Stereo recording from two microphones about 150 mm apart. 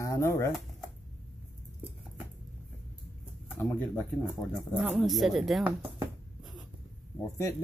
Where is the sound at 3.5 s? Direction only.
20° left (ahead or behind).